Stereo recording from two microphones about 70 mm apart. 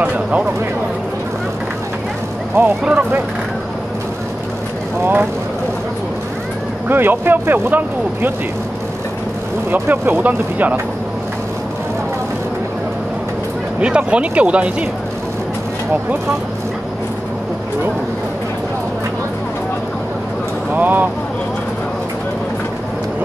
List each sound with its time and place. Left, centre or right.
0.0 s speech: centre
2.6 s speech: right
6.9 s speech: right
9.7 s speech: right
13.7 s speech: centre
20.7 s speech: right